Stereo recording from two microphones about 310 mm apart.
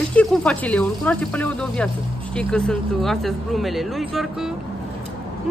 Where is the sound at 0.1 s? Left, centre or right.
Centre.